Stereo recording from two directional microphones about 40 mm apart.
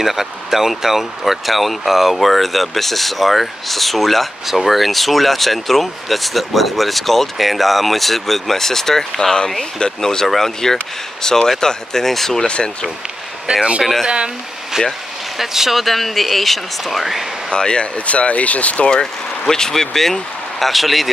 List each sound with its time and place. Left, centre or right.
0.0 s speech: centre
12.4 s speech: left
13.5 s speech: right
14.8 s speech: centre
17.5 s speech: left
17.9 s speech: left
19.4 s speech: centre